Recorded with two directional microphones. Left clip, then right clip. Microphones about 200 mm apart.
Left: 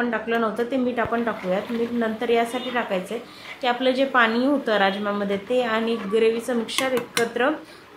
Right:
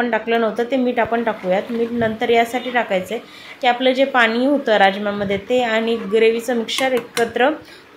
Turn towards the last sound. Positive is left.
turn(degrees=0)  # may be behind; listen again after turning